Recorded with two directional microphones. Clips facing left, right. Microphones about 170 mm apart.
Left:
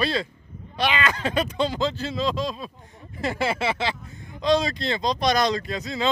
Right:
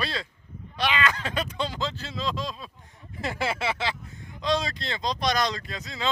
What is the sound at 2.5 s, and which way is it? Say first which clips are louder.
Speech: left 6 dB; 40° left (ahead or behind).